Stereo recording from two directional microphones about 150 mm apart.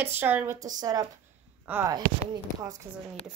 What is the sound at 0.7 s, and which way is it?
A woman's voice, 25° right (ahead or behind).